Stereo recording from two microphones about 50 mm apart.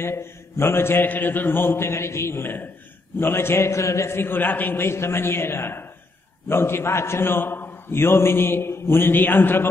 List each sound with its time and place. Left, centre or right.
0.0 s a man's voice: left
1.0 s a man's voice: left
4.2 s a man's voice: left
4.8 s a man's voice: left